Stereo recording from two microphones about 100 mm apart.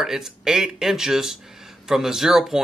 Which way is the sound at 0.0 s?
5° right (ahead or behind).